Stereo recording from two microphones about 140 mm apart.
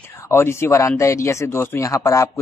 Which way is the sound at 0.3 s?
20° left (ahead or behind).